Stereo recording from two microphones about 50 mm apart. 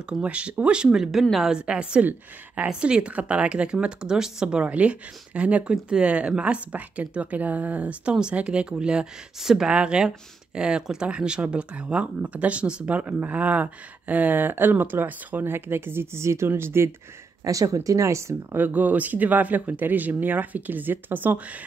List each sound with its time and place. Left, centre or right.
0.2 s speech: right; by 1.6 s centre
1.7 s speech: right
4.6 s speech: right; by 9.7 s centre
9.7 s speech: centre; by 16.4 s right
16.4 s speech: right
17.5 s speech: right
18.7 s speech: right